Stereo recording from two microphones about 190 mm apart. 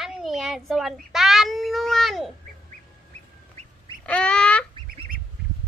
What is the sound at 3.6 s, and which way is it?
Duck, 35° right (ahead or behind).